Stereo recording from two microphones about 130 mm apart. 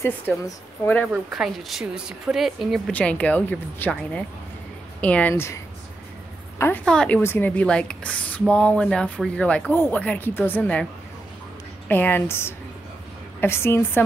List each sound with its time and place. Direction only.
0.3 s a woman's voice: 10° left (ahead or behind)
1.0 s a woman's voice: centre (ahead or behind)
2.9 s a woman's voice: 10° left (ahead or behind)
5.3 s a woman's voice: 25° left (ahead or behind)
6.6 s a woman's voice: 10° left (ahead or behind)
11.9 s a woman's voice: 15° left (ahead or behind)